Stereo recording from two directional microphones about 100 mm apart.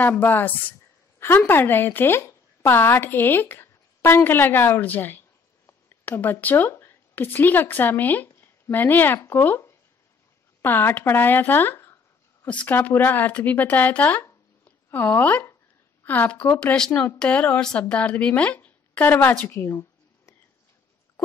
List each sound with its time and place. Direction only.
0.0 s a woman's voice: 20° left (ahead or behind)